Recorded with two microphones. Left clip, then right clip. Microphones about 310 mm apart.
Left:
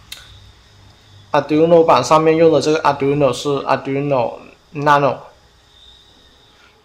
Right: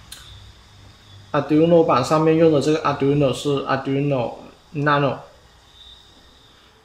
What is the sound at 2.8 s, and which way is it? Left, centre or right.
Speech, left.